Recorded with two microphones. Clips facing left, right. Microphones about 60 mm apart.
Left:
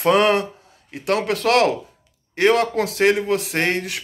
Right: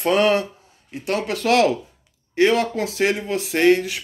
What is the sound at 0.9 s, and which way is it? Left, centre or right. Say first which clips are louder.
Speech: left 3 dB; left.